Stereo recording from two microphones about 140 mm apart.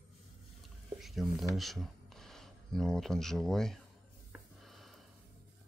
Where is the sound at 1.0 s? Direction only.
Centre (ahead or behind).